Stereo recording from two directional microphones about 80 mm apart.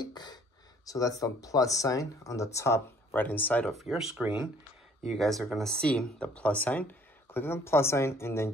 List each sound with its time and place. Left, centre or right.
0.0 s speech: left
0.8 s speech: left
3.2 s speech: left
3.7 s speech: centre
4.2 s speech: centre
5.1 s speech: centre
6.1 s speech: centre; by 8.5 s left